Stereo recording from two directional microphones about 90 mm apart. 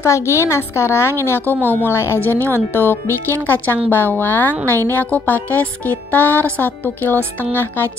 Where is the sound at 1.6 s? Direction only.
20° right (ahead or behind).